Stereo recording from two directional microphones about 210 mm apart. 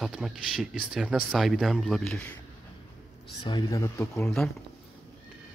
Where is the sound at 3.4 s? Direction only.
20° left (ahead or behind).